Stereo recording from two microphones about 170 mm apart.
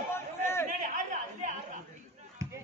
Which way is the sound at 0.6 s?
45° right (ahead or behind).